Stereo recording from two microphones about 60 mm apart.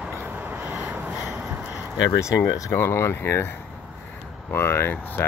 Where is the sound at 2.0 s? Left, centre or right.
Left.